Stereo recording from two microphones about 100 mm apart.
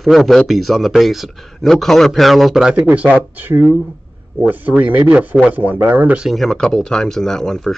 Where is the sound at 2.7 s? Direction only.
15° right (ahead or behind).